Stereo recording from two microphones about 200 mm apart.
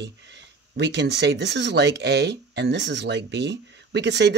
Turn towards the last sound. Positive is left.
turn(degrees=-60)  # may be behind; listen again after turning